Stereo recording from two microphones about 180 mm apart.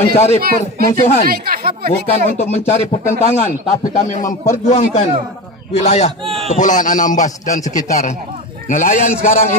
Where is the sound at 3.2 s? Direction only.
40° left (ahead or behind).